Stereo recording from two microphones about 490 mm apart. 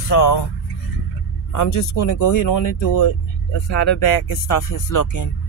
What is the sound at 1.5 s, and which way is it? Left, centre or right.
Speech, left.